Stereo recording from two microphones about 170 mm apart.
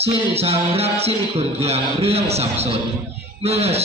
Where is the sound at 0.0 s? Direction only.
35° right (ahead or behind).